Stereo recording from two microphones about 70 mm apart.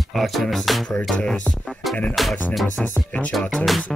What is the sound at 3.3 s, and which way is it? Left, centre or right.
Speech, centre.